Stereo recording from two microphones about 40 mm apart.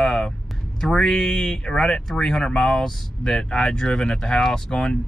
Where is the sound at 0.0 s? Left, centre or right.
Centre.